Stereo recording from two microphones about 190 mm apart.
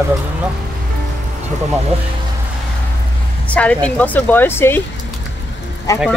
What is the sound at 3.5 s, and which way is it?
Speech, 5° left (ahead or behind).